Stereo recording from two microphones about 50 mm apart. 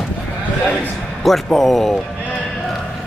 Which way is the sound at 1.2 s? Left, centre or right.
Centre.